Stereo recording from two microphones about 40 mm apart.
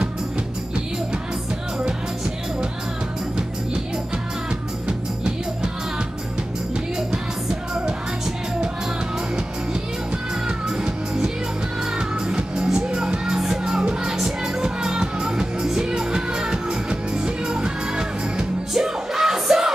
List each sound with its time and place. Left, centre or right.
4.8 s music: right
10.8 s music: centre
12.6 s music: centre
14.1 s music: centre
18.7 s music: centre